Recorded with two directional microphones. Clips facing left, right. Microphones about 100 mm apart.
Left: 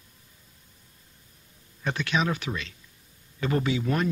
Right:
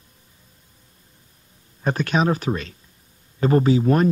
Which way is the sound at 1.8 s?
45° right (ahead or behind).